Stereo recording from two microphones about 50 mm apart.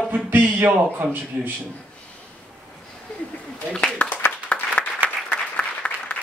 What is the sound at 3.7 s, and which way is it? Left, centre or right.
Speech, left.